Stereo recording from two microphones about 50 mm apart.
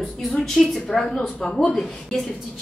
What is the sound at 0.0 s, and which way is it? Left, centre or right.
A woman's voice, centre.